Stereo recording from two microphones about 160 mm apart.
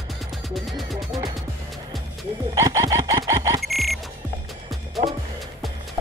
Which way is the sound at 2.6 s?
20° right (ahead or behind).